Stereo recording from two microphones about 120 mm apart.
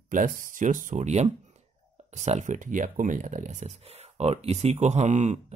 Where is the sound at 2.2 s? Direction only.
80° right.